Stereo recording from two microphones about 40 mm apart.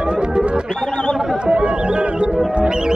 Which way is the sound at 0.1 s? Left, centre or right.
Centre.